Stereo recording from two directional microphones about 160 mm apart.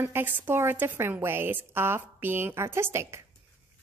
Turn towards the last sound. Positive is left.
turn(degrees=-15)  # may be behind; listen again after turning